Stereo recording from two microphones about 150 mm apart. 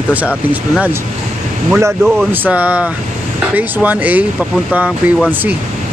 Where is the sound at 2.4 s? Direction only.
10° right (ahead or behind).